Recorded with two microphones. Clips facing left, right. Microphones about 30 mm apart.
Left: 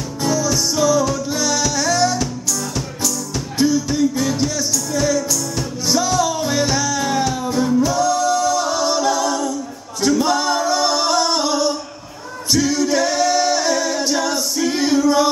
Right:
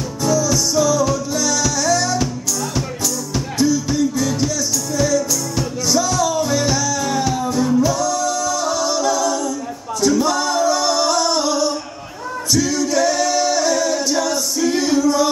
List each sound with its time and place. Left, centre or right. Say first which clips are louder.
0.2 s music: right 1 dB; centre
3.5 s music: even; centre
7.4 s music: even; centre
7.9 s singing: left 2 dB; centre
8.3 s music: left 2 dB; centre
10.0 s singing: even; centre
12.5 s a capella: left 1 dB; centre